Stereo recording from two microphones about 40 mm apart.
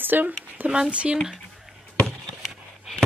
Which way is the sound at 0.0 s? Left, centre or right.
Right.